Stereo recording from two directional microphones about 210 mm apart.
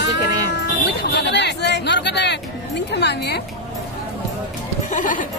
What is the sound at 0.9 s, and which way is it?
Speech, 50° left (ahead or behind).